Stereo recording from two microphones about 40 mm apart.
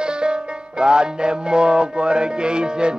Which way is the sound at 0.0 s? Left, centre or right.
Right.